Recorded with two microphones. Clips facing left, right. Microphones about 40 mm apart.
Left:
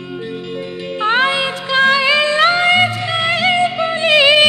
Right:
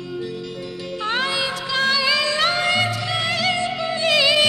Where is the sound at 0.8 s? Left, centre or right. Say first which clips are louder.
Left 8 dB; left.